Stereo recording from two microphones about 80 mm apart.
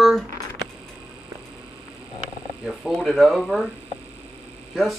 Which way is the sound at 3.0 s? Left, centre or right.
Centre.